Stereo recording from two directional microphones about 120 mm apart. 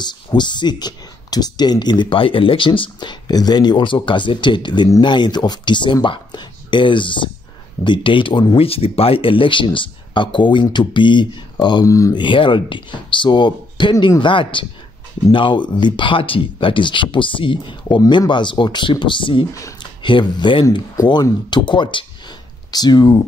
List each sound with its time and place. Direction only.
0.0 s speech: 40° left (ahead or behind)